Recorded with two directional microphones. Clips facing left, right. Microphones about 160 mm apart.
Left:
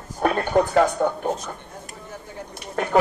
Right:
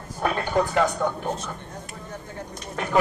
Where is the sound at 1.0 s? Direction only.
45° left (ahead or behind).